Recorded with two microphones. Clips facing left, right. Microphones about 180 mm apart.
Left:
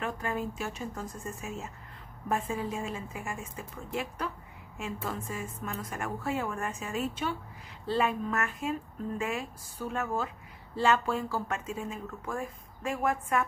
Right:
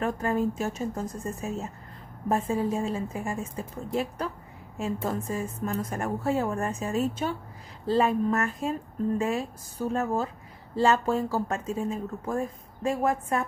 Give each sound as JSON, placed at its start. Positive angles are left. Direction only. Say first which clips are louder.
{"t": 0.0, "sound": "speech", "louder": "right 7 dB", "side_deg": -40}